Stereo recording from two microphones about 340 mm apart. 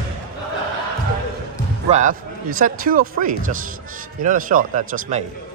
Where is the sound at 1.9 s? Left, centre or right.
Right.